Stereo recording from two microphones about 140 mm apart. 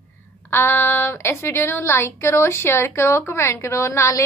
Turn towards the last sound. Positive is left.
turn(degrees=20)  # may be behind; listen again after turning